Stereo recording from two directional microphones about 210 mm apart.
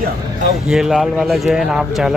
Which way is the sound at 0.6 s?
Centre (ahead or behind).